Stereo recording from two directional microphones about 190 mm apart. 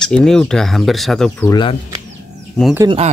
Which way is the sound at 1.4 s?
20° left (ahead or behind).